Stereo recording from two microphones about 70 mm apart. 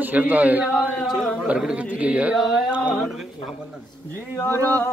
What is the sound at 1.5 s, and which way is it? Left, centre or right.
Speech, centre.